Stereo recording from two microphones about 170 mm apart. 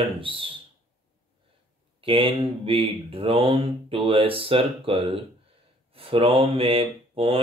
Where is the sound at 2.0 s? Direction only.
30° right (ahead or behind).